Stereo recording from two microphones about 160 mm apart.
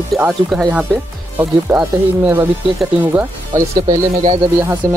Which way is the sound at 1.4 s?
15° right (ahead or behind).